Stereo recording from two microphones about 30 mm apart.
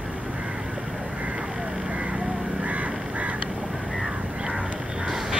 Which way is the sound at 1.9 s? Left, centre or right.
Right.